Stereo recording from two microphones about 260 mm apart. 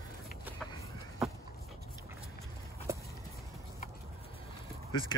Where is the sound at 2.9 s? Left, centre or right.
Centre.